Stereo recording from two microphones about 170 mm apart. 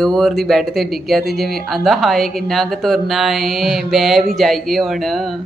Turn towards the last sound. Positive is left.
turn(degrees=0)  # may be behind; listen again after turning